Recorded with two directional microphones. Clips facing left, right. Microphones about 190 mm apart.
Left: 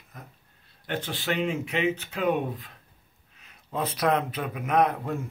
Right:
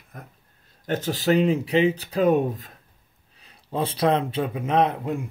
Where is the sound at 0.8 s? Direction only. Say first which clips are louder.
Right 6 dB; 40° right (ahead or behind).